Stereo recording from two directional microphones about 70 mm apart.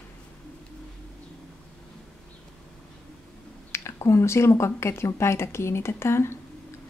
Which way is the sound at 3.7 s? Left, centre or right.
Left.